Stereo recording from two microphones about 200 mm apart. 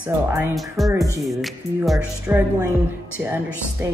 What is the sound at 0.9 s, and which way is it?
Speech, 15° right (ahead or behind).